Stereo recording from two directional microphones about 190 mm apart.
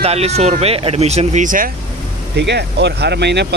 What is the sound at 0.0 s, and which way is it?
Speech, 35° right (ahead or behind).